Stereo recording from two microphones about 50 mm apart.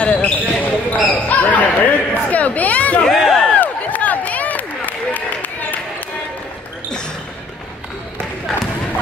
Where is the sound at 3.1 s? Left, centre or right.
Centre.